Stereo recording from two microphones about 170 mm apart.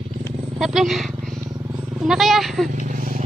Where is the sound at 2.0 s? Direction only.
Centre (ahead or behind).